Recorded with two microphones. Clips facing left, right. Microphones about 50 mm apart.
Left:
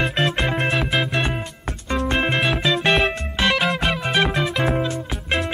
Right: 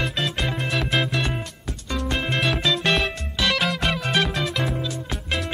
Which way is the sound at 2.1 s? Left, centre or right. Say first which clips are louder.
Left 5 dB; left.